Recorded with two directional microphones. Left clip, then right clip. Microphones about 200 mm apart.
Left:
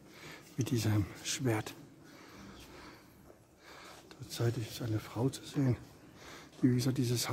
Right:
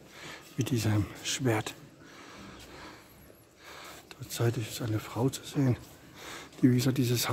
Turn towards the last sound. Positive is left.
turn(degrees=-15)  # may be behind; listen again after turning